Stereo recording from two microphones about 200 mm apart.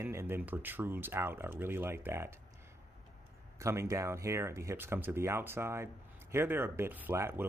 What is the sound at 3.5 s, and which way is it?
Speech, 15° right (ahead or behind).